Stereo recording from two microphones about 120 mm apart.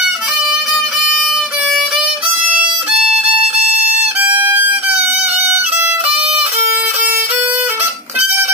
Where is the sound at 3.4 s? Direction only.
60° right (ahead or behind).